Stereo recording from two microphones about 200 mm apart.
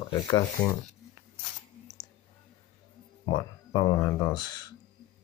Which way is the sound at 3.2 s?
20° left (ahead or behind).